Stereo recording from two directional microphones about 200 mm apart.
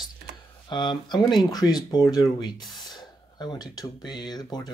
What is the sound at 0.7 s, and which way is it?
Speech, 20° left (ahead or behind).